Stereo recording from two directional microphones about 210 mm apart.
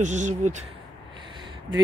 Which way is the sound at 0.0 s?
35° right (ahead or behind).